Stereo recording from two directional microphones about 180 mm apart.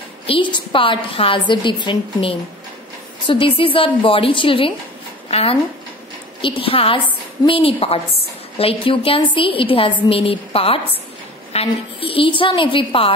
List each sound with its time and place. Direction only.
0.3 s a woman's voice: 30° left (ahead or behind)